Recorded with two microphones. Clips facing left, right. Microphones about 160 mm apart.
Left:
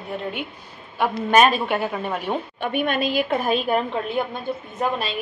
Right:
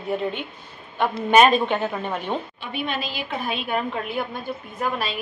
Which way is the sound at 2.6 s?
55° left (ahead or behind).